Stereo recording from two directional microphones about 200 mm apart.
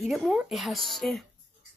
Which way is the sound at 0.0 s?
Centre (ahead or behind).